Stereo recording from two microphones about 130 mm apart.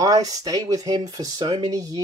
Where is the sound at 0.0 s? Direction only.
30° right (ahead or behind).